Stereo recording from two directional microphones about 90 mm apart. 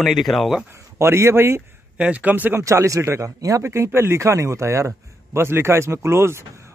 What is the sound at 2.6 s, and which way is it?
Speech, 35° right (ahead or behind).